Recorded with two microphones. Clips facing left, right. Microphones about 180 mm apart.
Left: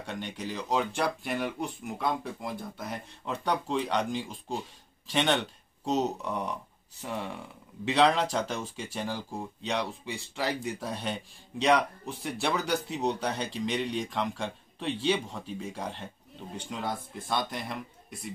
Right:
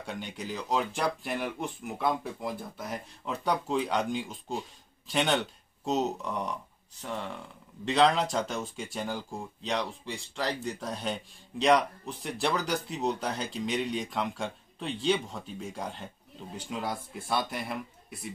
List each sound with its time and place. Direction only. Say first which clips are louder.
0.0 s speech: left 1 dB; 5° right (ahead or behind)